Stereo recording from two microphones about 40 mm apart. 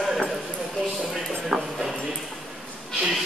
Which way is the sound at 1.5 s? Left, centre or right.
Centre.